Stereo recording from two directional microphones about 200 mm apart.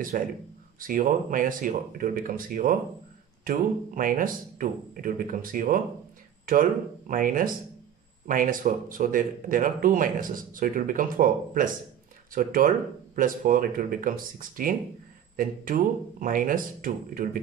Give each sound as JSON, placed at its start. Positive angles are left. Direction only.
{"t": 0.1, "sound": "speech", "side_deg": -40}